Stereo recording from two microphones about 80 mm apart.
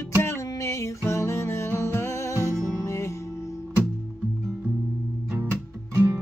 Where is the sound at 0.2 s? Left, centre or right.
Left.